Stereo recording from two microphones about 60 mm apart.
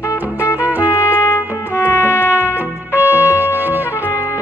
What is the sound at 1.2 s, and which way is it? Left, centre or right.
Music, left.